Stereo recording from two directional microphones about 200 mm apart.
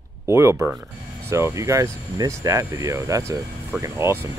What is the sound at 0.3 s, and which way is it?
Speech, 15° right (ahead or behind).